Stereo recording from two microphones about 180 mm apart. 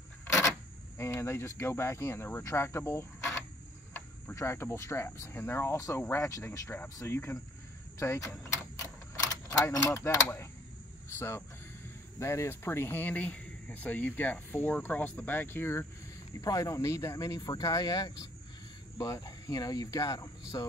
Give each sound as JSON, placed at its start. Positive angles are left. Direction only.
{"t": 0.9, "sound": "speech", "side_deg": 15}
{"t": 9.5, "sound": "speech", "side_deg": 20}